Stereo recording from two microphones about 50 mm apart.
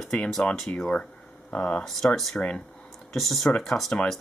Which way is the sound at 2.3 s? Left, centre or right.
Left.